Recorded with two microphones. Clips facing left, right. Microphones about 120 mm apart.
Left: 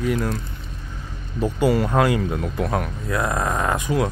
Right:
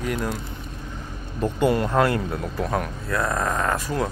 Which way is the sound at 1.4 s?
5° left (ahead or behind).